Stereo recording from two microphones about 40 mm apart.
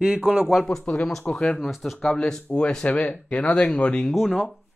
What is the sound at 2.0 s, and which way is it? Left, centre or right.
Speech, centre.